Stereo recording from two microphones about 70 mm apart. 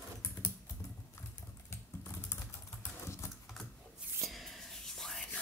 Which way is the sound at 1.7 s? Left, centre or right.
Left.